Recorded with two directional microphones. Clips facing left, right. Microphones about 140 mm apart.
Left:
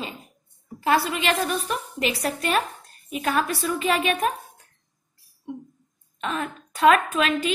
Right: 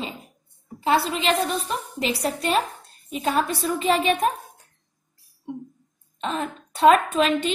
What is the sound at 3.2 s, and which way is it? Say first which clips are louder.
A woman's voice: right 1 dB; 30° right (ahead or behind).